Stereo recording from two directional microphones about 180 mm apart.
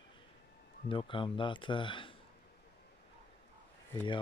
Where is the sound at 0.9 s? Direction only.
30° left (ahead or behind).